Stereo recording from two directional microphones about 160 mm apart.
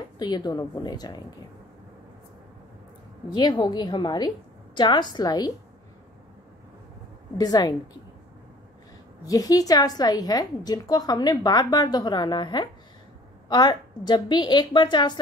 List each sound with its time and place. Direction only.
0.2 s a woman's voice: 25° left (ahead or behind)
3.3 s a woman's voice: 25° left (ahead or behind)
7.3 s a woman's voice: 25° left (ahead or behind)
9.2 s a woman's voice: 20° left (ahead or behind)